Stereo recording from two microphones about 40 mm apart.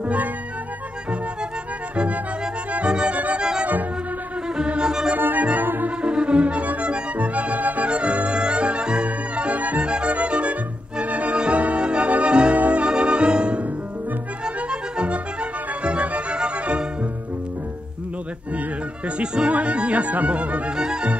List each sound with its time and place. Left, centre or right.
0.0 s music: right
2.0 s music: right
2.9 s music: right
4.5 s music: right
5.1 s organ: right
5.9 s music: right
7.9 s music: right
9.8 s music: right
12.5 s music: right
12.8 s music: right
18.5 s speech: right
20.7 s music: centre